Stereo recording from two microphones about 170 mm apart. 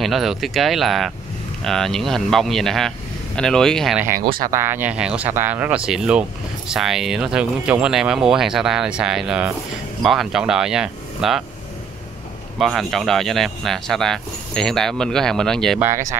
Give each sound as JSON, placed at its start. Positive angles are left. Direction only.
{"t": 0.0, "sound": "speech", "side_deg": 0}
{"t": 4.4, "sound": "speech", "side_deg": -15}
{"t": 12.5, "sound": "speech", "side_deg": 0}
{"t": 15.8, "sound": "speech", "side_deg": -15}